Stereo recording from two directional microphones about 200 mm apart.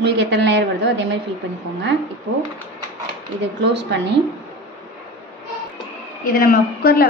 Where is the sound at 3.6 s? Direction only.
60° right (ahead or behind).